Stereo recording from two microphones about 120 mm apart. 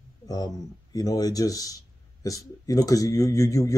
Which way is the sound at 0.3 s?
30° left (ahead or behind).